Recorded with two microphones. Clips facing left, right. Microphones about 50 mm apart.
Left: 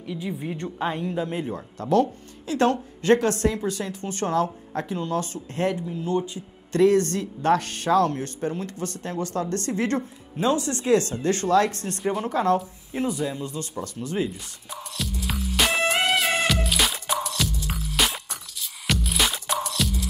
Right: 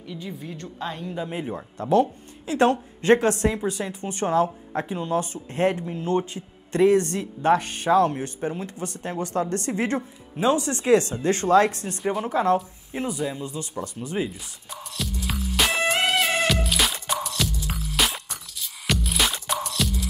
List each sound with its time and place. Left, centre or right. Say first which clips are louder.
0.0 s a woman's voice: left 4 dB; centre
0.4 s a woman's voice: left 5 dB; left
1.0 s speech: left 3 dB; centre
1.3 s a woman's voice: left 1 dB; centre; by 6.4 s right
6.7 s speech: even; centre
11.8 s speech: even; centre
12.3 s speech: right 1 dB; centre
12.5 s a sound: even; centre